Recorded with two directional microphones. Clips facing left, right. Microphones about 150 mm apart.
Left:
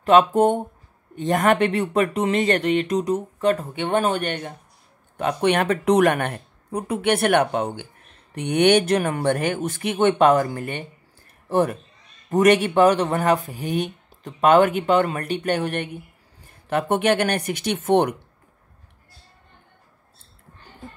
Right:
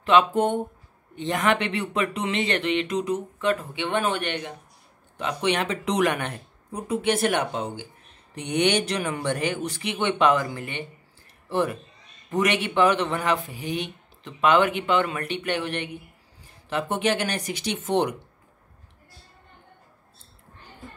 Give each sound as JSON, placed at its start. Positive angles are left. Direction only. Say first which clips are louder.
{"t": 0.0, "sound": "speech", "louder": "left 4 dB", "side_deg": 45}